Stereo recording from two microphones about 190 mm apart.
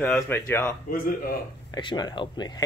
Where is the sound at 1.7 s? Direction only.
25° left (ahead or behind).